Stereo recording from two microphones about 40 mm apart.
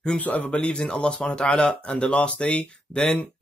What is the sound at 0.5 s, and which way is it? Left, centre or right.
Speech, left.